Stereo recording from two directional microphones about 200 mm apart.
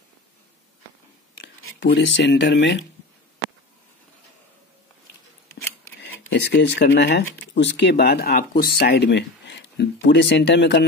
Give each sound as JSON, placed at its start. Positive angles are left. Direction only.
{"t": 1.4, "sound": "speech", "side_deg": 60}
{"t": 5.9, "sound": "speech", "side_deg": 60}